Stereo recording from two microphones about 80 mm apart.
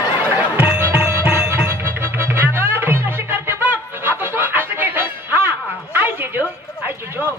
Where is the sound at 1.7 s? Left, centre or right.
Right.